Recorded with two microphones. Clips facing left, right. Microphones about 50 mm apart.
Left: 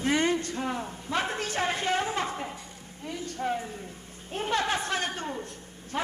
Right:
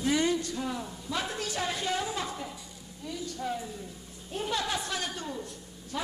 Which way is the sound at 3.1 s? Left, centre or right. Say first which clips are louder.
Left 3 dB; left.